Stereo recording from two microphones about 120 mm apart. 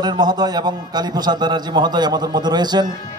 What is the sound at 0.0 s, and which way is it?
A man's voice, 35° right (ahead or behind).